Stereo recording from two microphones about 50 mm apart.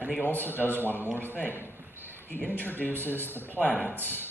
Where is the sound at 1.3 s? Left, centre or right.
Left.